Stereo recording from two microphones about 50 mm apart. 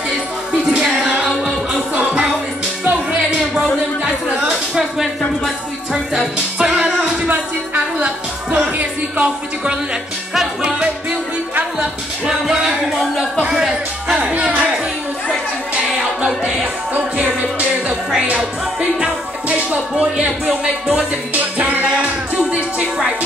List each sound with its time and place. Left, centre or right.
2.8 s music: right
4.7 s a sound: centre
6.3 s music: centre
7.2 s music: right
10.3 s music: centre
13.4 s music: centre
16.9 s music: right
20.0 s a man's voice: centre
20.9 s music: right
22.8 s music: centre